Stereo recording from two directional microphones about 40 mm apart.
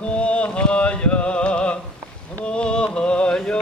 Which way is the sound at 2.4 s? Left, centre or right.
Left.